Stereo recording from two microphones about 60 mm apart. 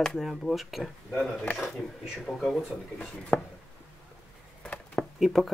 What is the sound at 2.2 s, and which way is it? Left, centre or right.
Speech, centre.